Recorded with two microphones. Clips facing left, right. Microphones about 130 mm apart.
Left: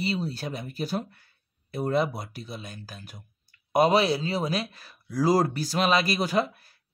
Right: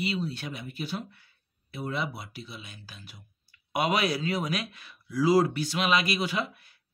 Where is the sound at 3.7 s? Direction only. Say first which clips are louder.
Left 6 dB; 35° left (ahead or behind).